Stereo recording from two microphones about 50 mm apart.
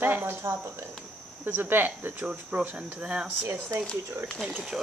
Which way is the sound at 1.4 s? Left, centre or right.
Right.